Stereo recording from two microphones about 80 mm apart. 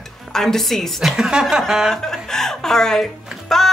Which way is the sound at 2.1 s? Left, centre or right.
Centre.